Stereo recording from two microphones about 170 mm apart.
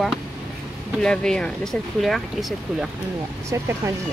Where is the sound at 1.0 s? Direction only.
5° left (ahead or behind).